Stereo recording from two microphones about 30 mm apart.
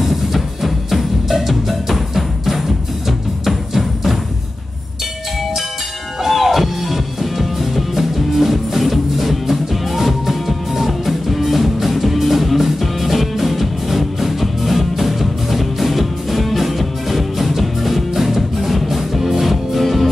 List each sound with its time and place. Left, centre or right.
0.0 s music: centre
6.2 s music: centre